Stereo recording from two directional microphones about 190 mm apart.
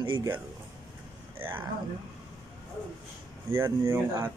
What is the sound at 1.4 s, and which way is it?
Speech, 10° right (ahead or behind).